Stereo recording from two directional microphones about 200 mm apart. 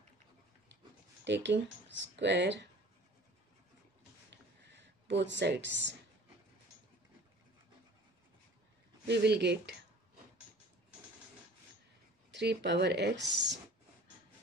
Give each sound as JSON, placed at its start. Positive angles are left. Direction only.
{"t": 1.2, "sound": "speech", "side_deg": -60}
{"t": 4.6, "sound": "speech", "side_deg": -60}
{"t": 9.0, "sound": "speech", "side_deg": -55}
{"t": 12.3, "sound": "speech", "side_deg": -60}